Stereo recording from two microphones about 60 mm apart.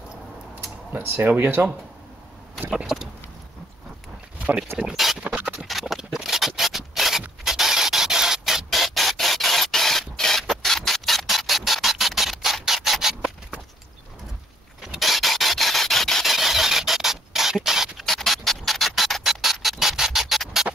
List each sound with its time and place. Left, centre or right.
0.9 s speech: right
2.7 s a sound: centre
4.9 s scratch: centre
5.2 s scratch: centre
5.7 s clip-clop: centre
6.2 s rub: centre
15.0 s rub: centre
18.0 s music: centre